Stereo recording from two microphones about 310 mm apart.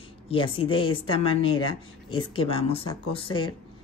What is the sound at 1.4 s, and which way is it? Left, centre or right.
Speech, left.